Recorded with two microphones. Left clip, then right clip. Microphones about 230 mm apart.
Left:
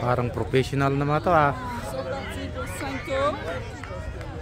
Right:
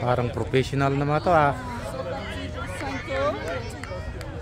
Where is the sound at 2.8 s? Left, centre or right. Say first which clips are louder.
Left 1 dB; left.